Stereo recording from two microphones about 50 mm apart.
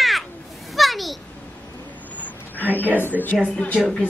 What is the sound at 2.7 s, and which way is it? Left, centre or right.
Speech, left.